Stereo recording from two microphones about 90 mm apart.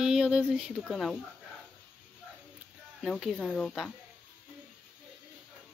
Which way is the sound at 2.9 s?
5° right (ahead or behind).